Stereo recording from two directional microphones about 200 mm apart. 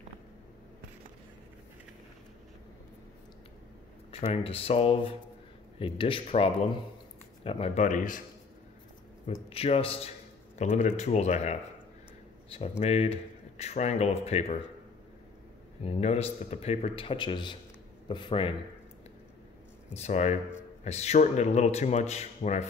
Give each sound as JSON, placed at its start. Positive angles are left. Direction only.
{"t": 4.1, "sound": "speech", "side_deg": 30}
{"t": 9.2, "sound": "speech", "side_deg": 30}
{"t": 12.5, "sound": "speech", "side_deg": 30}
{"t": 15.8, "sound": "speech", "side_deg": 30}
{"t": 19.9, "sound": "speech", "side_deg": 35}